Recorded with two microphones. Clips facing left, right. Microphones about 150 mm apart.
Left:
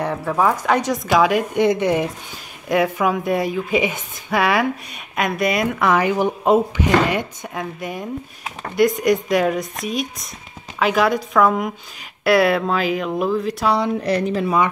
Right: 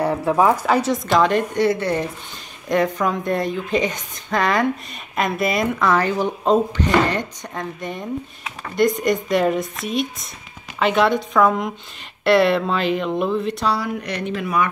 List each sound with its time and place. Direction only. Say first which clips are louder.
0.0 s speech: right 2 dB; 15° right (ahead or behind)
0.7 s a woman's voice: even; 5° right (ahead or behind)
5.8 s a woman's voice: left 3 dB; 15° left (ahead or behind)
13.7 s a woman's voice: left 4 dB; 25° left (ahead or behind)